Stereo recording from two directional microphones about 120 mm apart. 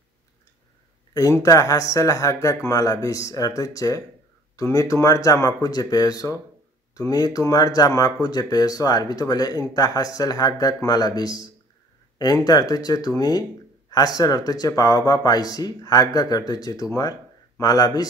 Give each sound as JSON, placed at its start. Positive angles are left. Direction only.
{"t": 1.1, "sound": "speech", "side_deg": 30}